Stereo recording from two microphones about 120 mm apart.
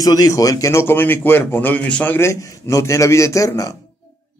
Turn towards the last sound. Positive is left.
turn(degrees=25)  # may be behind; listen again after turning